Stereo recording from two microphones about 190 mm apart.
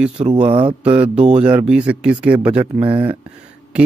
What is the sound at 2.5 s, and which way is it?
Speech, 30° right (ahead or behind).